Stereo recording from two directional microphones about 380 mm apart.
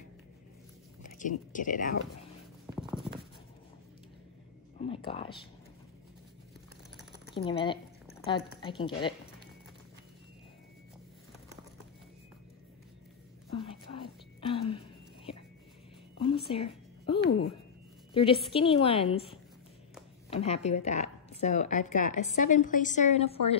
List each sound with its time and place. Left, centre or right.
1.5 s a woman's voice: left
2.6 s writing: centre
4.7 s speech: centre
7.3 s a woman's voice: centre
13.5 s a sound: centre
18.5 s a woman's voice: centre
20.2 s a sound: centre
20.6 s a woman's voice: centre